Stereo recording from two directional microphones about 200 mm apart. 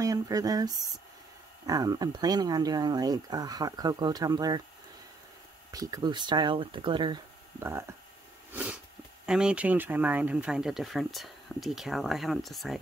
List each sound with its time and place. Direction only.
0.0 s speech: 15° right (ahead or behind)
5.7 s speech: 20° right (ahead or behind)
8.5 s speech: 5° right (ahead or behind)